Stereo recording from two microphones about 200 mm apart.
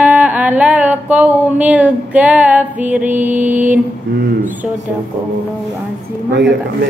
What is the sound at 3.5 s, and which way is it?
Mantra, 10° right (ahead or behind).